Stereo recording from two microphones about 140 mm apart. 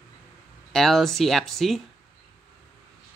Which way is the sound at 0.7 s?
Centre (ahead or behind).